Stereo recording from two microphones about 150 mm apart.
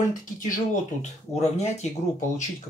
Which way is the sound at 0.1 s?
60° left (ahead or behind).